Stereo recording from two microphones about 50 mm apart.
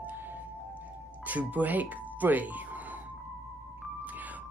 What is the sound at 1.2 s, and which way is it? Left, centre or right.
Speech, right.